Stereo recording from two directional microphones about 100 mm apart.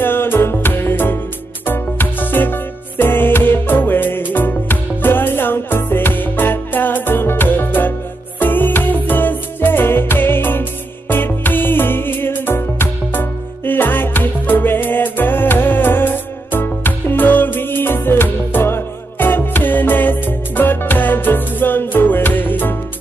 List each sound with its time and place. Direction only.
0.0 s music: 20° left (ahead or behind)